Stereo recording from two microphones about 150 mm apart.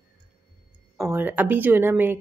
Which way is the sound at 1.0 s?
10° right (ahead or behind).